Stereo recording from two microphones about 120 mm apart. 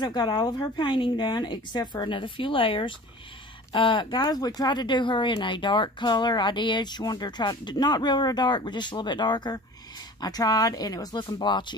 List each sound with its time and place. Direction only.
0.0 s speech: 35° left (ahead or behind)